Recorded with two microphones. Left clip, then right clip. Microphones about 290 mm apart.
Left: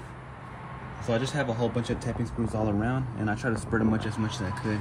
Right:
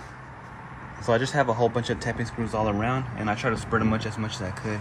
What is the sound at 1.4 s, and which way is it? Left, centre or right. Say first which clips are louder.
Speech: right 5 dB; right.